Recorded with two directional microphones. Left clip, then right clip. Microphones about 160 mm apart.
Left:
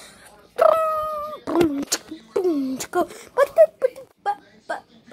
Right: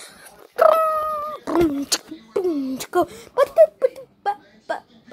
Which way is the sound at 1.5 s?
5° left (ahead or behind).